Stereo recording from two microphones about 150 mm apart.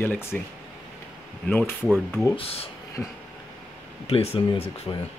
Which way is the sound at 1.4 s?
10° left (ahead or behind).